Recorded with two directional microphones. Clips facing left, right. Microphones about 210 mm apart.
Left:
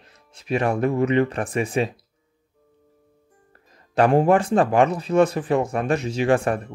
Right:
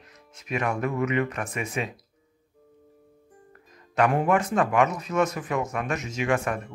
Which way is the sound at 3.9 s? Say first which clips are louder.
Left 5 dB; 30° left (ahead or behind).